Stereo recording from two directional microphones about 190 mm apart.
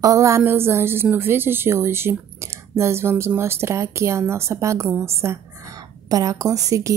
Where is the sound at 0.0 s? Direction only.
15° right (ahead or behind).